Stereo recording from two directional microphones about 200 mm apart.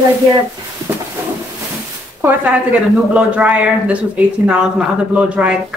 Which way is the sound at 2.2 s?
5° right (ahead or behind).